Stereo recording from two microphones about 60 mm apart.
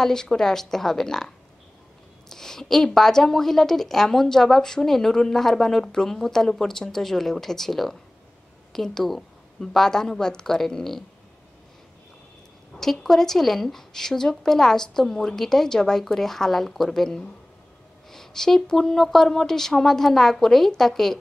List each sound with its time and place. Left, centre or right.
0.0 s a woman's voice: centre
12.7 s a woman's voice: centre